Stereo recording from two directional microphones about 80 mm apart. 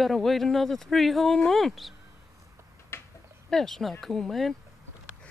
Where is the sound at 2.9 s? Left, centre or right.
Left.